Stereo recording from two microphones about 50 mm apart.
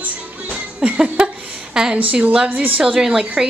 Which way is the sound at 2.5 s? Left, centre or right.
Right.